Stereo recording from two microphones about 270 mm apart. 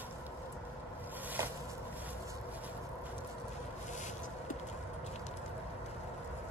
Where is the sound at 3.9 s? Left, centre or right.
Left.